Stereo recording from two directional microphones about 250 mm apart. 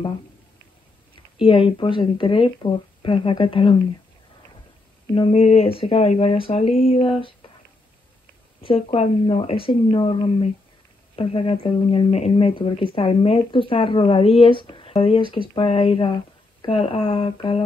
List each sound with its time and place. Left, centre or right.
1.4 s speech: left
5.1 s speech: left
8.6 s speech: left